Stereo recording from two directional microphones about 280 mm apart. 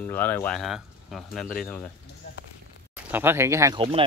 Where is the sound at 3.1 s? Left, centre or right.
Centre.